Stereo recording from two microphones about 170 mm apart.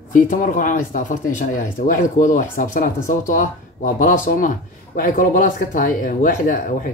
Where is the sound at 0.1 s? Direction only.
50° left (ahead or behind).